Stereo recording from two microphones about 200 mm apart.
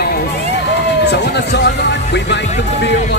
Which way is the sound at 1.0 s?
60° left (ahead or behind).